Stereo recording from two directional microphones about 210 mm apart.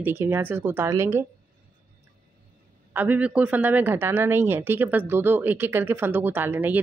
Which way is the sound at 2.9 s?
10° right (ahead or behind).